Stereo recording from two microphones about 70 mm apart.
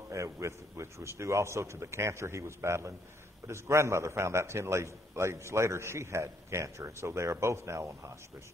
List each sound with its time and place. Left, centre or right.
0.1 s a man's voice: right